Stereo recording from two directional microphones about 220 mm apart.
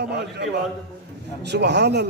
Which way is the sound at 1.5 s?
50° right (ahead or behind).